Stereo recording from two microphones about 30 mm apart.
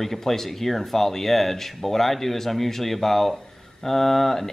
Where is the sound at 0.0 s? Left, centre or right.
Centre.